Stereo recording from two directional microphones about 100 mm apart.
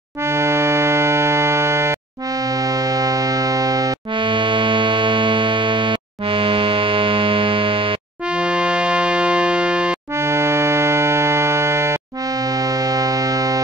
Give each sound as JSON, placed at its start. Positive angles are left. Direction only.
{"t": 0.2, "sound": "music", "side_deg": -25}
{"t": 4.1, "sound": "music", "side_deg": -55}
{"t": 8.3, "sound": "music", "side_deg": -10}
{"t": 10.1, "sound": "music", "side_deg": -25}